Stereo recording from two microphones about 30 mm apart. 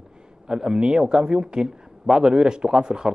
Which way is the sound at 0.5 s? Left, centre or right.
Right.